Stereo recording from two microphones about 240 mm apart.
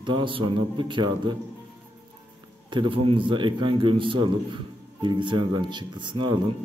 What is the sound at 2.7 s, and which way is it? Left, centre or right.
A man's voice, right.